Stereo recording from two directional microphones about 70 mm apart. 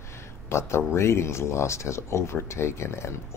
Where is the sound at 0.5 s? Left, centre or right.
Left.